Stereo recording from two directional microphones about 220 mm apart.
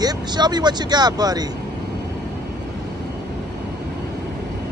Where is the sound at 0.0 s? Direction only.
20° right (ahead or behind).